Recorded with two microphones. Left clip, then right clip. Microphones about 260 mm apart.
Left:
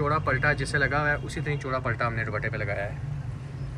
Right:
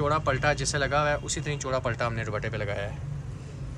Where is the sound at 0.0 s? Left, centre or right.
Centre.